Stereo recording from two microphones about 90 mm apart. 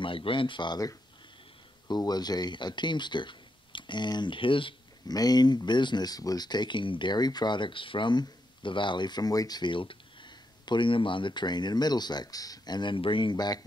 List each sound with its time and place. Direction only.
0.0 s speech: 75° left (ahead or behind)
1.9 s speech: 50° left (ahead or behind); by 4.7 s 70° left (ahead or behind)
5.0 s speech: 45° left (ahead or behind)